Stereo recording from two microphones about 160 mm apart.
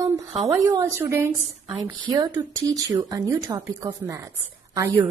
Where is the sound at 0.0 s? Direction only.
20° right (ahead or behind).